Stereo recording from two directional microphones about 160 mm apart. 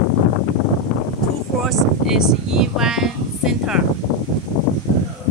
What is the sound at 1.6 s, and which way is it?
Speech, centre (ahead or behind).